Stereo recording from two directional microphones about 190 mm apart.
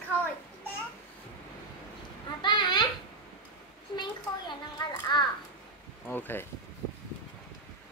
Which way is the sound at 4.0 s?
25° left (ahead or behind).